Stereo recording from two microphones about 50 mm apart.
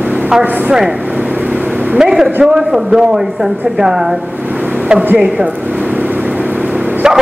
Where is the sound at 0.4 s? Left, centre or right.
Right.